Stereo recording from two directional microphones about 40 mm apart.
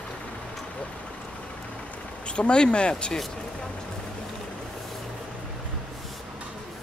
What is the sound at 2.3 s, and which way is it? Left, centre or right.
Speech, left.